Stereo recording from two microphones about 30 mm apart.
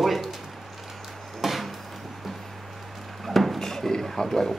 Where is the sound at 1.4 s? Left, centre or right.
Centre.